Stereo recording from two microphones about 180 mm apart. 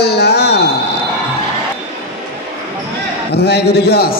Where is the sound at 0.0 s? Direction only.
65° left (ahead or behind).